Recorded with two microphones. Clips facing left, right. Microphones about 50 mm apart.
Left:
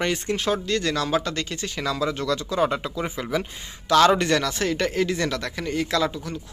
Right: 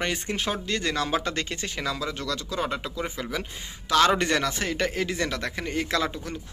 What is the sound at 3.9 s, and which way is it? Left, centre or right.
Speech, centre.